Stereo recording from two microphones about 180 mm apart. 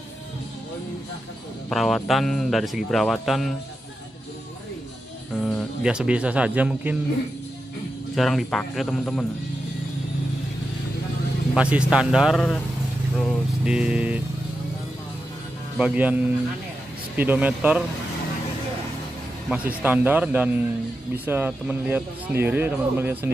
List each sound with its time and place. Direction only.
1.7 s a man's voice: centre (ahead or behind)
5.3 s speech: centre (ahead or behind)
8.2 s a man's voice: centre (ahead or behind)
11.5 s a man's voice: 5° right (ahead or behind)
15.8 s speech: 10° right (ahead or behind)
17.2 s speech: 10° right (ahead or behind)
19.5 s speech: 10° right (ahead or behind)